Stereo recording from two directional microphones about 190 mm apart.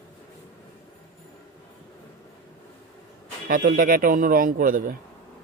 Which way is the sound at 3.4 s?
45° right (ahead or behind).